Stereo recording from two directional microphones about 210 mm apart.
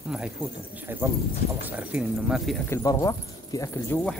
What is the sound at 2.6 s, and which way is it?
Speech, 15° left (ahead or behind).